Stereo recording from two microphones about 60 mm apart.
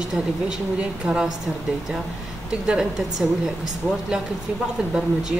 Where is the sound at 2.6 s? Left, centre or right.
Centre.